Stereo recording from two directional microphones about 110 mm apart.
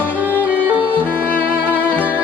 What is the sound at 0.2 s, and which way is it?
Music, 15° right (ahead or behind).